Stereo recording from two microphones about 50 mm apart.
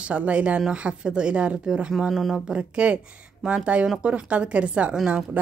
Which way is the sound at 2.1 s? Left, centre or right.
Centre.